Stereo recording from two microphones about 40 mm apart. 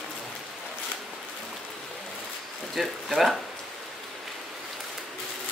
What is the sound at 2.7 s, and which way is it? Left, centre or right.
Speech, centre.